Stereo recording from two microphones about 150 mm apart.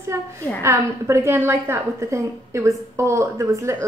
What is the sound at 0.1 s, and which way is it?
A woman's voice, 20° right (ahead or behind).